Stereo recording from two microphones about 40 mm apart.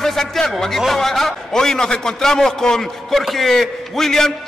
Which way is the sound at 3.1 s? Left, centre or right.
Centre.